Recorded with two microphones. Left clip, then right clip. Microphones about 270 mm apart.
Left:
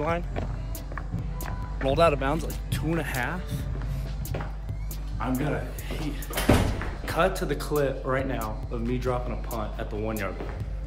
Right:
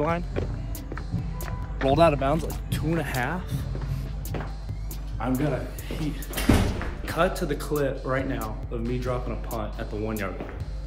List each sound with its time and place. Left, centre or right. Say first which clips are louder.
0.0 s speech: right 2 dB; centre
5.2 s speech: right 2 dB; centre